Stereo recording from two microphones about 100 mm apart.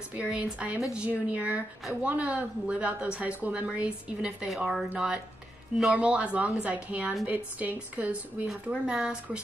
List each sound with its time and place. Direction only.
0.1 s a woman's voice: 15° right (ahead or behind)